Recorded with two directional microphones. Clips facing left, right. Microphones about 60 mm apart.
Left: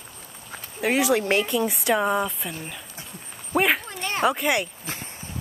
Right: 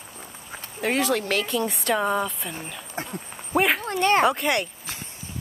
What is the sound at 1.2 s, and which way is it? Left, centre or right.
Speech, left.